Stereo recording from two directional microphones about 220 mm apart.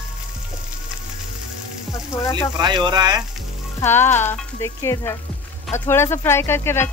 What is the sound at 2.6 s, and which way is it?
Speech, 20° right (ahead or behind).